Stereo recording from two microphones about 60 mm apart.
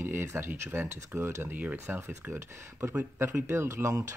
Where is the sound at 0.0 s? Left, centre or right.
Right.